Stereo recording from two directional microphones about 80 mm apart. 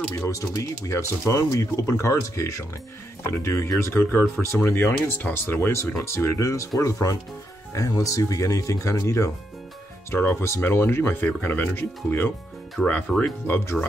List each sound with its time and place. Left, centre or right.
0.1 s speech: left
10.4 s speech: left